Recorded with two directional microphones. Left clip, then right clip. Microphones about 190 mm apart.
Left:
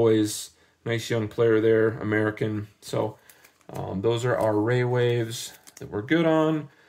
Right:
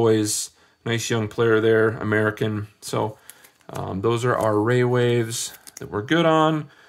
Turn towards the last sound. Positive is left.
turn(degrees=-25)  # may be behind; listen again after turning